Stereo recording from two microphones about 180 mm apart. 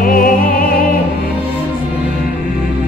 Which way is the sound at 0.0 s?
50° left (ahead or behind).